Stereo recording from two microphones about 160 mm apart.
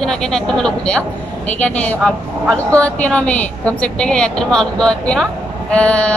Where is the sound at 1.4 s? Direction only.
10° left (ahead or behind).